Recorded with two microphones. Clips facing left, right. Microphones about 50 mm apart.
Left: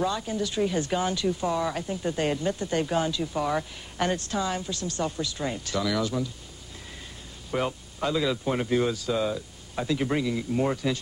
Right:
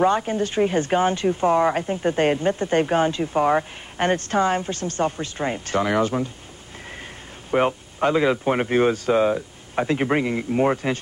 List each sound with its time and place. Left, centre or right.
0.0 s speech: right
7.5 s speech: right